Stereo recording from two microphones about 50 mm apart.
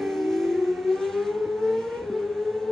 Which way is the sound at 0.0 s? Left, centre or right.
Centre.